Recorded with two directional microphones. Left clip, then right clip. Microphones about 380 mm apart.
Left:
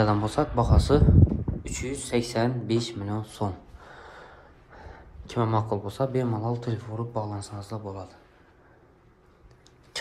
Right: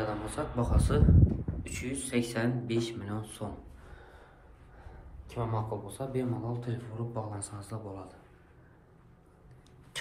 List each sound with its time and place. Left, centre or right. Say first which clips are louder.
0.0 s speech: left 10 dB; centre
5.2 s speech: left 9 dB; left